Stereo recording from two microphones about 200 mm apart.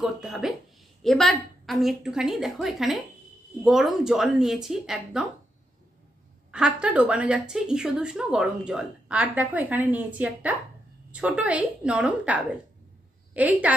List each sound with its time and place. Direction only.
0.0 s speech: centre (ahead or behind)
6.5 s a woman's voice: 5° right (ahead or behind)